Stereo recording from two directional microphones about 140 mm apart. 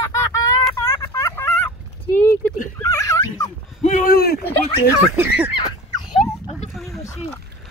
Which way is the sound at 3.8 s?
60° left (ahead or behind).